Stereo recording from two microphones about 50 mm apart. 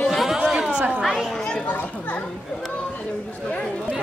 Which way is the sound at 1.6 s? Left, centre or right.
Left.